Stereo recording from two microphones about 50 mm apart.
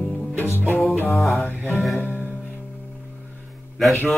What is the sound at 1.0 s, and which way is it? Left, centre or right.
Music, centre.